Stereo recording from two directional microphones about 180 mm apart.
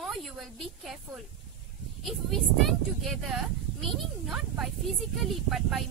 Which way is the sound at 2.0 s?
Centre (ahead or behind).